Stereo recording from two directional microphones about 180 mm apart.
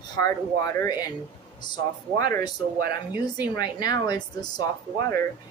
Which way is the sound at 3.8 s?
20° left (ahead or behind).